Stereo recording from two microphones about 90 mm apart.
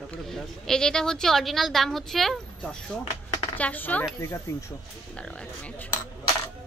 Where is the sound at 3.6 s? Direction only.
20° left (ahead or behind).